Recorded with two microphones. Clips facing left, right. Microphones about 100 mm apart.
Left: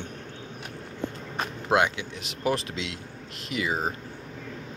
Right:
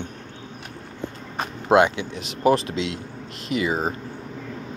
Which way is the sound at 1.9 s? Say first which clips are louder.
Right 6 dB; 5° left (ahead or behind).